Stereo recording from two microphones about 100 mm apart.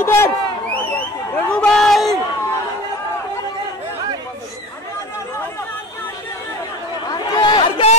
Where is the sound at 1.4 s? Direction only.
10° left (ahead or behind).